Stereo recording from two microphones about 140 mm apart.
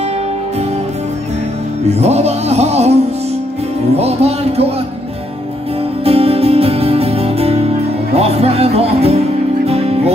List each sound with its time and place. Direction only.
1.9 s music: 50° right (ahead or behind)
6.0 s music: 45° right (ahead or behind)